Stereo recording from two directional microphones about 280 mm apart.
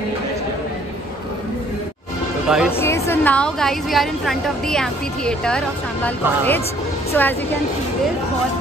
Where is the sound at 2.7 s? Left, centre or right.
Centre.